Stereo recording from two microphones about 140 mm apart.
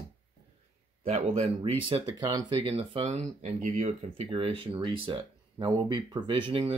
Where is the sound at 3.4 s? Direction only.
60° right (ahead or behind).